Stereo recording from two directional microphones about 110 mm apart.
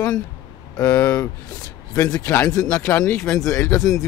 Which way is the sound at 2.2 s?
25° left (ahead or behind).